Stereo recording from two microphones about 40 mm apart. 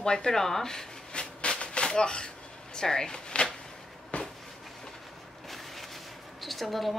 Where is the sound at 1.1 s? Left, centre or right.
Left.